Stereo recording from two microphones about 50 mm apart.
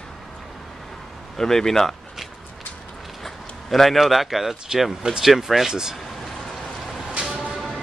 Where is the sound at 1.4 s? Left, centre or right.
Centre.